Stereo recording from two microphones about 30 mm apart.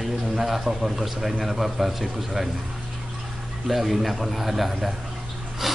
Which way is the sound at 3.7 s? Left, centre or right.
Centre.